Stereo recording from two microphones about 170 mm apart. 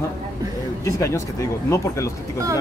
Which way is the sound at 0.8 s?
20° left (ahead or behind).